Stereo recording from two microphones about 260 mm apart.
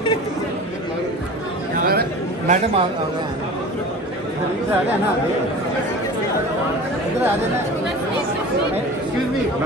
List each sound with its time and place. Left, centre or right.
1.8 s chatter: right